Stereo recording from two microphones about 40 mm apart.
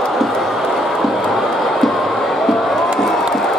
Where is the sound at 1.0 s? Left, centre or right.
Centre.